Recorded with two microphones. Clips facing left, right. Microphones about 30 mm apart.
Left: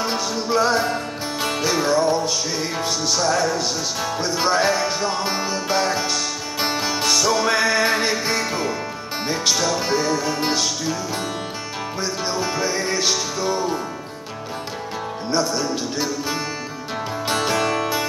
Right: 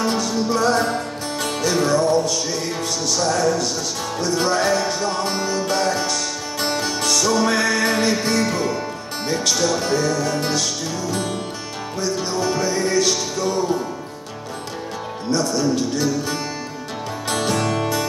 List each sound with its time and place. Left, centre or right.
0.0 s music: centre
12.0 s music: centre
15.3 s music: centre
17.5 s music: centre